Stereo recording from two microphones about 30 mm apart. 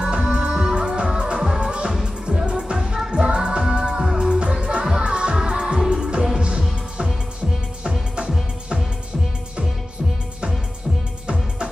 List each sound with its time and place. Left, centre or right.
0.0 s music: right
2.8 s music: right
5.5 s music of asia: right